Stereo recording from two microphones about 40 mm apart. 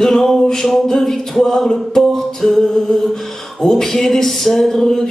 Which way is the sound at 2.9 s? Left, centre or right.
Centre.